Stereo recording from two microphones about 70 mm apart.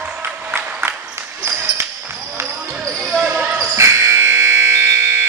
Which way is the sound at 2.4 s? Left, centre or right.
Right.